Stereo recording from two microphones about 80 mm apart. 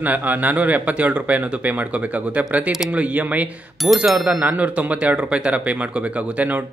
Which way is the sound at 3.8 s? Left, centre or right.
Centre.